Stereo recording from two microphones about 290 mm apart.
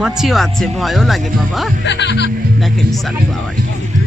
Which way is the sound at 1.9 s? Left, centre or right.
Left.